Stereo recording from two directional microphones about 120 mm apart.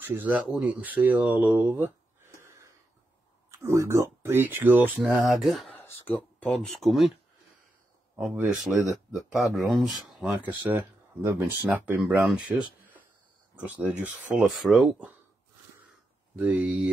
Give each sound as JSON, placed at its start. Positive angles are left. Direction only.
{"t": 0.0, "sound": "speech", "side_deg": -15}
{"t": 3.5, "sound": "speech", "side_deg": -25}
{"t": 5.0, "sound": "speech", "side_deg": -5}
{"t": 5.8, "sound": "speech", "side_deg": 15}
{"t": 8.2, "sound": "speech", "side_deg": -5}
{"t": 10.2, "sound": "speech", "side_deg": -15}
{"t": 13.6, "sound": "speech", "side_deg": -10}
{"t": 14.5, "sound": "speech", "side_deg": 0}
{"t": 16.3, "sound": "speech", "side_deg": -15}